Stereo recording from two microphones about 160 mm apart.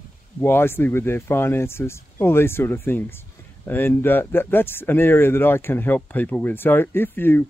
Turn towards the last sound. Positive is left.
turn(degrees=15)  # may be behind; listen again after turning